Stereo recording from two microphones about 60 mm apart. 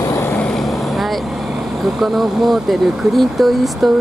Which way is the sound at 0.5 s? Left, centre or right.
Centre.